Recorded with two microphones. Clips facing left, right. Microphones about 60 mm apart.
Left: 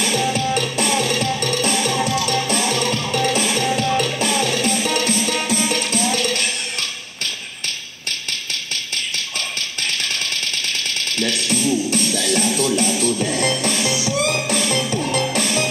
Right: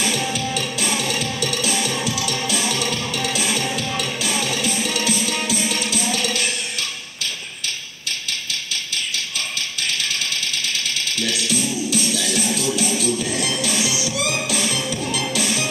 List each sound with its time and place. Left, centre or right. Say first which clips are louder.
0.9 s music: left 4 dB; left
11.1 s music: left 3 dB; left